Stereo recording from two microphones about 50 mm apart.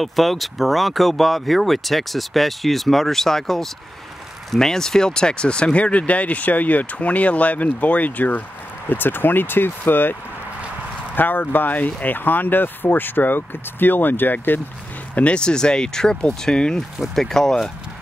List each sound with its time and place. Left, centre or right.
0.0 s speech: centre; by 10.1 s left
11.1 s speech: left
15.1 s speech: left